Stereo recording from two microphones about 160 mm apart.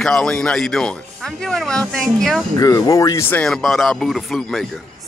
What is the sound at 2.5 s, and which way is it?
Speech, 20° left (ahead or behind).